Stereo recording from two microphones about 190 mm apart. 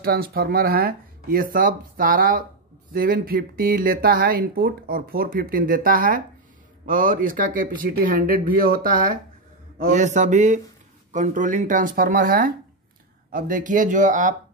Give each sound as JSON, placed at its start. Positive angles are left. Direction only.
{"t": 0.0, "sound": "speech", "side_deg": -55}